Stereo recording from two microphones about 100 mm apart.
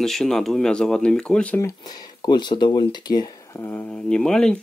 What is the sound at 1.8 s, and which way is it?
Speech, 45° left (ahead or behind).